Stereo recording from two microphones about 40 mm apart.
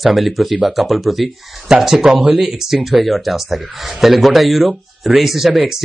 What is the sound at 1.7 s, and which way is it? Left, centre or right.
Speech, centre.